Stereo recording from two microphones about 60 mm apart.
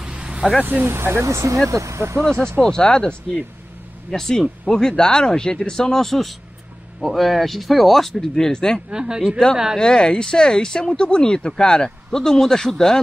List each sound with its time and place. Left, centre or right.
0.0 s vehicle: centre
0.6 s speech: right
0.8 s speech: right
1.3 s speech: right
2.3 s speech: right
2.8 s speech: centre
8.9 s speech: centre
9.8 s speech: centre